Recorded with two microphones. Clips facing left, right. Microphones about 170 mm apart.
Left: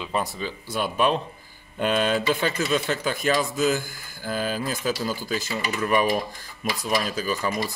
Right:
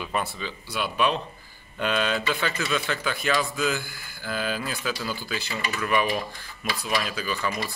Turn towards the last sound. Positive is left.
turn(degrees=40)  # may be behind; listen again after turning